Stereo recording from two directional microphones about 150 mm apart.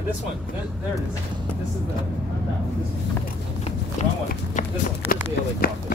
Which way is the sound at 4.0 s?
50° left (ahead or behind).